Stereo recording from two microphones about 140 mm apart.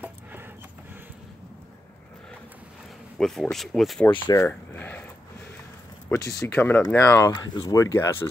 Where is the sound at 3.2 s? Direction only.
5° left (ahead or behind).